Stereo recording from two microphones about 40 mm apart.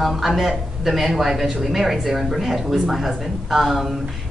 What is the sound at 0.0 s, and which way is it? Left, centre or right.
Speech, centre.